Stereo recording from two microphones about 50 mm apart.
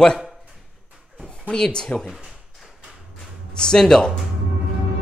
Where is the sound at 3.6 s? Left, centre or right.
Centre.